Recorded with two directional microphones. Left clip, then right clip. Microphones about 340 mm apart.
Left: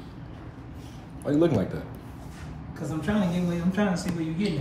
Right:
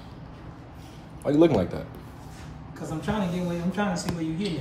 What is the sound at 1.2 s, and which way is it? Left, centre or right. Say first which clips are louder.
Speech: right 3 dB; centre.